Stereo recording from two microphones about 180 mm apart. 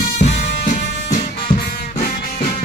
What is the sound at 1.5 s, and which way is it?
Music, 25° left (ahead or behind).